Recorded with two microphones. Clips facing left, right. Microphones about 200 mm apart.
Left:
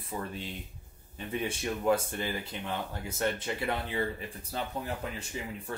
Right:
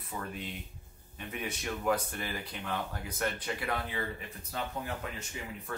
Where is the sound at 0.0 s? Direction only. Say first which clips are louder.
Left 2 dB; 30° left (ahead or behind).